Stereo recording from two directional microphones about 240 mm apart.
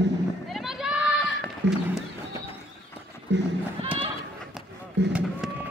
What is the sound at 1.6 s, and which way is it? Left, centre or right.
Speech, right.